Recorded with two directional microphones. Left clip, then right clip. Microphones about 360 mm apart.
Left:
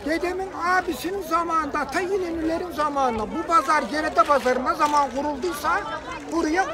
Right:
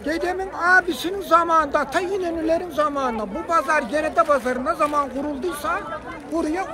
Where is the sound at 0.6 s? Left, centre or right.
Centre.